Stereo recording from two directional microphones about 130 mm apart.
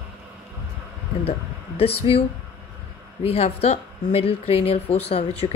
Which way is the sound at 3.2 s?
50° left (ahead or behind).